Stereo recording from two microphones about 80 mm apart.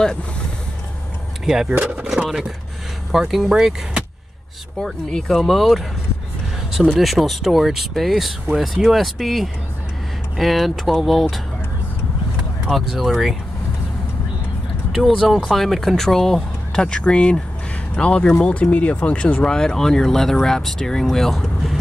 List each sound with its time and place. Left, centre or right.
1.4 s speech: centre
4.8 s speech: centre
7.0 s speech: centre
12.6 s speech: centre
14.9 s speech: centre